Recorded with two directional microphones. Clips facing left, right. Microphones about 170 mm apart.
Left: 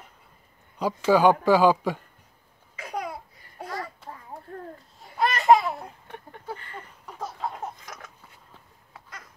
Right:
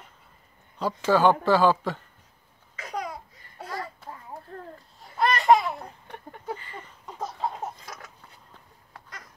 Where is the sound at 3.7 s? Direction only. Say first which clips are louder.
Even; centre (ahead or behind).